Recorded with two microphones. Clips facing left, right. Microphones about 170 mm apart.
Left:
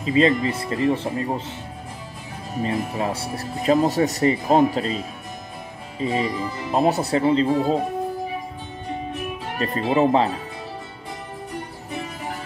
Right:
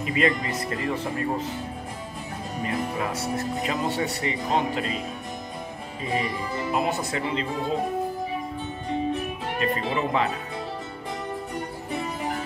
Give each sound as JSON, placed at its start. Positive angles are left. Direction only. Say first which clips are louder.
{"t": 0.0, "sound": "speech", "louder": "left 6 dB", "side_deg": 30}
{"t": 2.6, "sound": "speech", "louder": "left 4 dB", "side_deg": 30}
{"t": 6.7, "sound": "speech", "louder": "left 8 dB", "side_deg": 35}
{"t": 9.6, "sound": "speech", "louder": "left 7 dB", "side_deg": 35}